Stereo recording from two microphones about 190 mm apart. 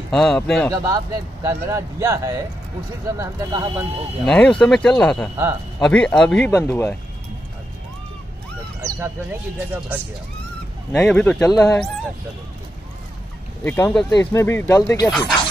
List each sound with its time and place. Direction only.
0.1 s speech: centre (ahead or behind)
0.8 s speech: 20° right (ahead or behind)
4.3 s speech: 5° left (ahead or behind)
8.8 s speech: 15° right (ahead or behind)
10.9 s speech: 10° left (ahead or behind)
13.7 s speech: 10° left (ahead or behind)
15.0 s speech: centre (ahead or behind)